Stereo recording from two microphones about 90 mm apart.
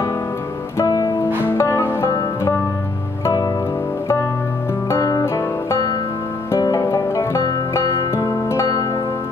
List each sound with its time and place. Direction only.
0.7 s music: 40° left (ahead or behind)
1.4 s music: 30° left (ahead or behind)
4.8 s music: 35° left (ahead or behind)